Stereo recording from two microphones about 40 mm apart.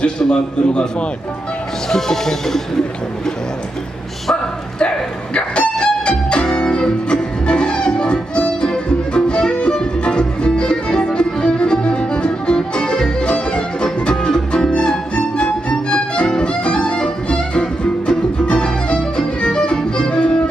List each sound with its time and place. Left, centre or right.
0.0 s a man's voice: left
1.9 s speech: centre
4.7 s music: left
14.7 s violin: left